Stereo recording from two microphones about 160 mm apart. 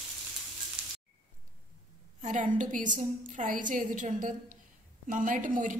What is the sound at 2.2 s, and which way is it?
A woman's voice, 55° right (ahead or behind).